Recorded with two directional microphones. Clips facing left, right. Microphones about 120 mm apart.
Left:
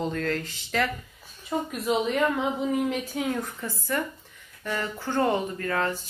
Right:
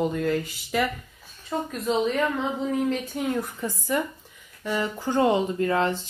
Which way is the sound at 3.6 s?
15° right (ahead or behind).